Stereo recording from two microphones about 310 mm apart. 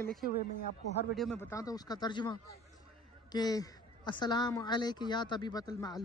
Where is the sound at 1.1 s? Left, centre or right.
Centre.